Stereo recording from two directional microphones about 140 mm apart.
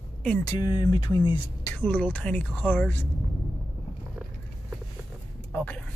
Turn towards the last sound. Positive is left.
turn(degrees=10)  # may be behind; listen again after turning